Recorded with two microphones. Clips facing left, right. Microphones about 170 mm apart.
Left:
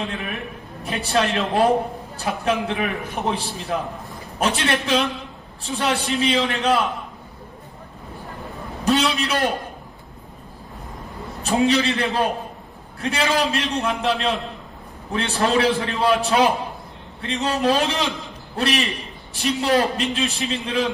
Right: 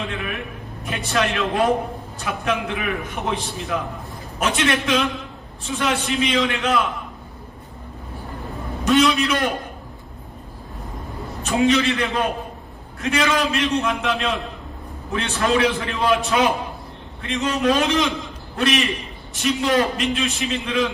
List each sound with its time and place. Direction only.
0.0 s a man's voice: 35° left (ahead or behind)
8.8 s a man's voice: 35° left (ahead or behind)
11.4 s a man's voice: 35° left (ahead or behind)
18.2 s a sound: 35° left (ahead or behind)
19.3 s a man's voice: 35° left (ahead or behind)